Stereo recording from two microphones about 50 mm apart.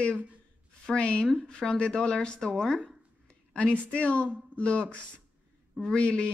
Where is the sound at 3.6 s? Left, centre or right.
Left.